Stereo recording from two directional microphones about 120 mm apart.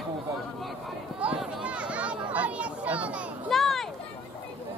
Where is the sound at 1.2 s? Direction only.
5° right (ahead or behind).